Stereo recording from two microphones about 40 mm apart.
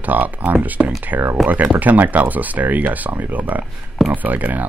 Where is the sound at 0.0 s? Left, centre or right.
Right.